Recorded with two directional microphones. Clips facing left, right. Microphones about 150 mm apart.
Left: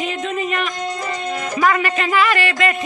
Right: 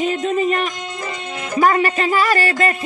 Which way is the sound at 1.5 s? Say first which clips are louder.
Right 3 dB; 35° right (ahead or behind).